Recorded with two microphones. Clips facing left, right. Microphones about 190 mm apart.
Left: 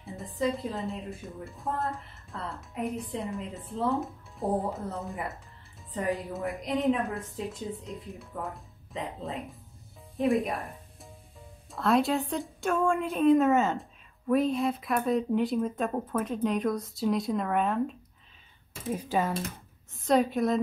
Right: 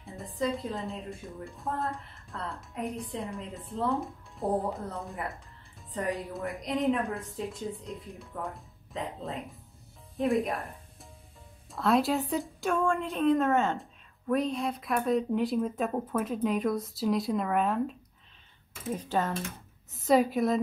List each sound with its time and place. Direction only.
0.0 s a woman's voice: centre (ahead or behind)
18.9 s speech: 10° left (ahead or behind)
19.9 s a woman's voice: centre (ahead or behind)